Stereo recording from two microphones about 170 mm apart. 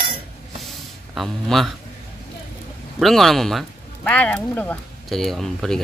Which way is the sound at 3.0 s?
Centre (ahead or behind).